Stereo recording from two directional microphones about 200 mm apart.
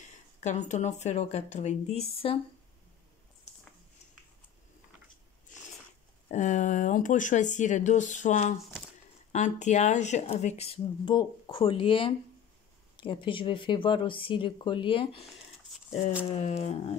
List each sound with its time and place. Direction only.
0.4 s speech: 35° left (ahead or behind)
6.2 s speech: 40° left (ahead or behind)
15.9 s speech: 5° right (ahead or behind)
16.3 s speech: 35° left (ahead or behind)